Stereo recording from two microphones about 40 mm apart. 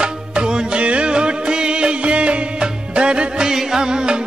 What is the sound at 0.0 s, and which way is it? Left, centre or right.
Music, right.